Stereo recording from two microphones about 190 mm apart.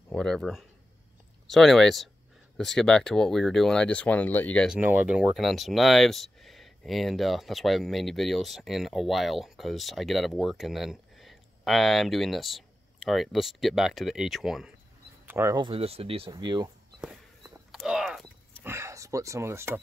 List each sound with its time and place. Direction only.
0.1 s speech: 5° left (ahead or behind)
4.6 s speech: 10° right (ahead or behind)
15.2 s speech: 15° right (ahead or behind)
17.6 s a sound: 5° right (ahead or behind)
18.7 s speech: 15° right (ahead or behind)